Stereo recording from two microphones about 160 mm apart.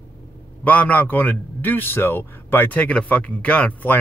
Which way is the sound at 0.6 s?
10° left (ahead or behind).